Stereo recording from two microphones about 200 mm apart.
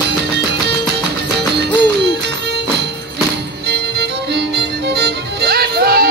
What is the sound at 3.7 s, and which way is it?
Music, 55° right (ahead or behind).